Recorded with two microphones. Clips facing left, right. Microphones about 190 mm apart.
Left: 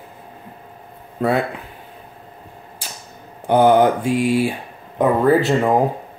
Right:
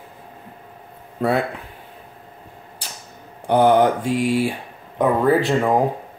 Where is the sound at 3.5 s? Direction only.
5° left (ahead or behind).